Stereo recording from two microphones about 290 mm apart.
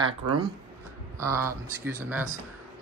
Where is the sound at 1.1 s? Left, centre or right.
Centre.